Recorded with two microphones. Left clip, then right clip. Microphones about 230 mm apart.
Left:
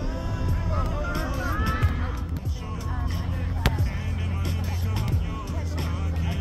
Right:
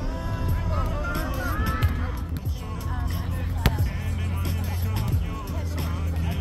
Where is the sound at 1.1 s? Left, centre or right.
Right.